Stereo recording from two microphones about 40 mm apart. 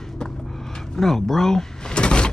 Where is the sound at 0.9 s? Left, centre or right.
Centre.